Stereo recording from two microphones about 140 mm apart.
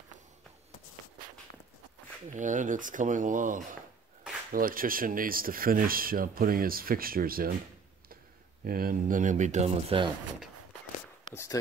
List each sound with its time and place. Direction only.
2.3 s speech: 65° right (ahead or behind)
4.5 s speech: 90° right
8.6 s speech: 90° right; by 10.0 s 45° right (ahead or behind)